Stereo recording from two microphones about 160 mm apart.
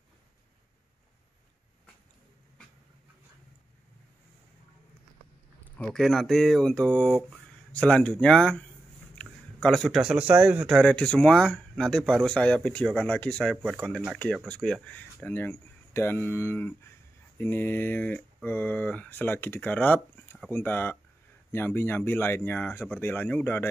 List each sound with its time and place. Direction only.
5.8 s speech: 5° left (ahead or behind)
10.8 s speech: 5° left (ahead or behind)
13.6 s speech: 5° right (ahead or behind)
14.1 s speech: 5° left (ahead or behind)